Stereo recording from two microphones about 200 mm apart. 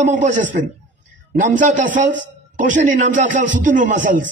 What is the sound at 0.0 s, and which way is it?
A man's voice, 40° right (ahead or behind).